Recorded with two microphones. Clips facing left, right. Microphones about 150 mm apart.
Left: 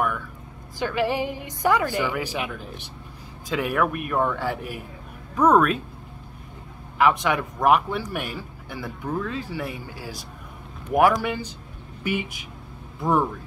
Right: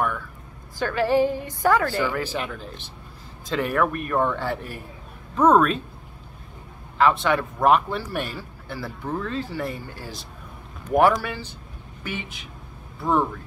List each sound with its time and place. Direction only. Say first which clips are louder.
0.7 s speech: right 4 dB; 15° left (ahead or behind)
7.0 s speech: right 1 dB; 15° left (ahead or behind)